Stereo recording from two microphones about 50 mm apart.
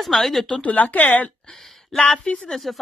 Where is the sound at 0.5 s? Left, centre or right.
Left.